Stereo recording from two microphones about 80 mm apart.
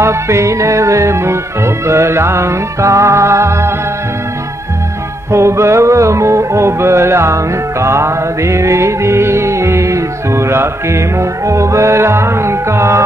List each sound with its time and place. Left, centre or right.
0.0 s music: right
5.3 s music: right